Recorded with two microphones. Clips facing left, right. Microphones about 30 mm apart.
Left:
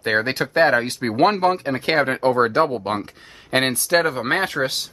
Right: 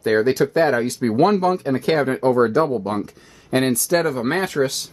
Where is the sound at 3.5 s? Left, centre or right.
Left.